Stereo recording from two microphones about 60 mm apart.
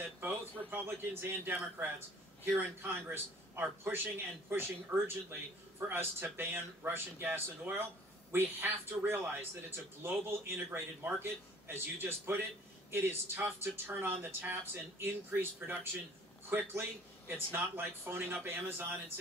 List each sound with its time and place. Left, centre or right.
0.2 s speech: right